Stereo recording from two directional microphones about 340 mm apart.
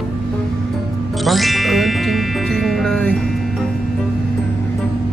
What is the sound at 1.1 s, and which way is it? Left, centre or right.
Music, centre.